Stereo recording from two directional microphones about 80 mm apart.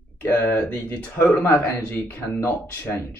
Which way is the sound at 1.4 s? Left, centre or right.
Left.